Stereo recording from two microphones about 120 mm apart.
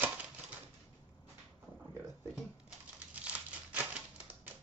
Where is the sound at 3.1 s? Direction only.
10° right (ahead or behind).